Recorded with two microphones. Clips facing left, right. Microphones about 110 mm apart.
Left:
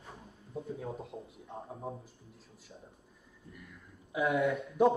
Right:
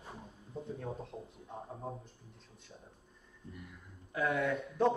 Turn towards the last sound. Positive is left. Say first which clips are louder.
# left 3 dB
turn(degrees=0)  # may be behind; listen again after turning